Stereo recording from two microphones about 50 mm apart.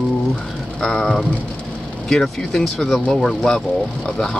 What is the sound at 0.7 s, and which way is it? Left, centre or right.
Speech, centre.